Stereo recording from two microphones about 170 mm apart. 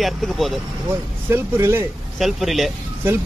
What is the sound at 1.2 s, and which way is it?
Speech, 15° right (ahead or behind).